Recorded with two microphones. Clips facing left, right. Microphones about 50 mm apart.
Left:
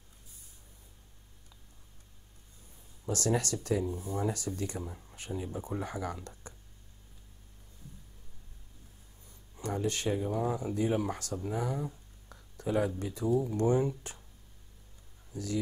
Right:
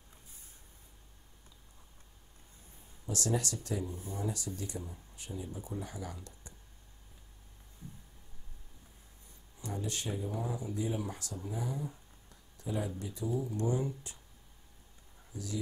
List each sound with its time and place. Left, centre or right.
3.1 s speech: left
4.2 s speech: left
9.6 s speech: left
15.3 s speech: left